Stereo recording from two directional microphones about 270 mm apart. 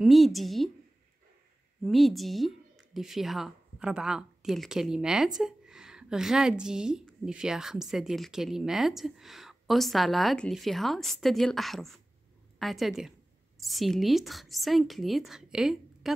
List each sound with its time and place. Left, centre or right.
0.0 s a woman's voice: centre
1.8 s a woman's voice: centre